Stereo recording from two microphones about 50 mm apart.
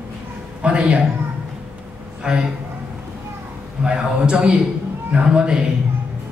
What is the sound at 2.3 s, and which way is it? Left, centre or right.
Speech, centre.